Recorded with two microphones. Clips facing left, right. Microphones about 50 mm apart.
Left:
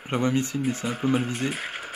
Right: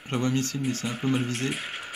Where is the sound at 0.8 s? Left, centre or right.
Centre.